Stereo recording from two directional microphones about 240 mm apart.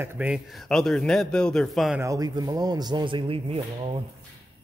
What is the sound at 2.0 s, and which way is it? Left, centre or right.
Speech, centre.